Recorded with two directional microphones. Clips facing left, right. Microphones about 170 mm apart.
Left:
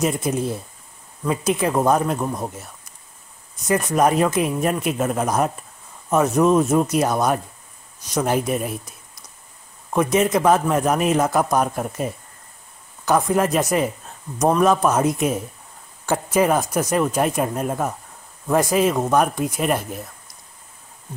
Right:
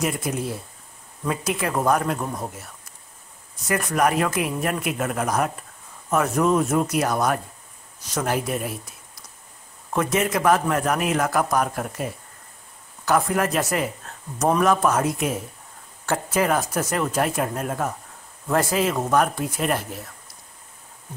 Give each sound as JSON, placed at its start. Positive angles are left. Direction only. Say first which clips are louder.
{"t": 0.0, "sound": "a man's voice", "louder": "left 4 dB", "side_deg": 25}
{"t": 3.6, "sound": "a man's voice", "louder": "left 3 dB", "side_deg": 20}